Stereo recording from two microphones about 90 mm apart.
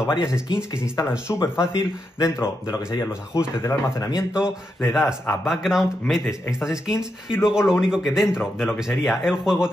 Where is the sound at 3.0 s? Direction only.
35° left (ahead or behind).